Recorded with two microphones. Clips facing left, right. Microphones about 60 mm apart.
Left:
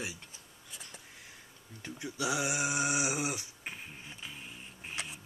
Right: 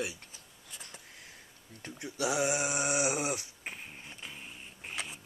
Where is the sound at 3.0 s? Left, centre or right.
Right.